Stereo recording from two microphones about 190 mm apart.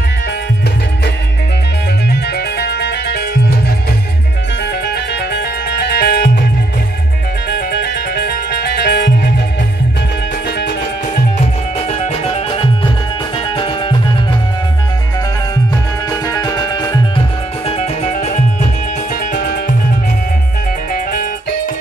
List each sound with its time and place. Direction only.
2.0 s music: 60° left (ahead or behind)
4.8 s music: 60° left (ahead or behind)
7.4 s music: 60° left (ahead or behind)
11.9 s music: 35° left (ahead or behind)
16.1 s music: 20° left (ahead or behind)
17.6 s music: 30° left (ahead or behind)
19.3 s music: 55° left (ahead or behind)
20.9 s music: 50° left (ahead or behind)